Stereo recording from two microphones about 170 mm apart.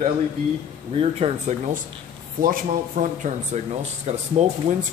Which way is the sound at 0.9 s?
35° right (ahead or behind).